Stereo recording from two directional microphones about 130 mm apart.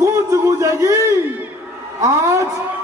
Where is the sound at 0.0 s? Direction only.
25° right (ahead or behind).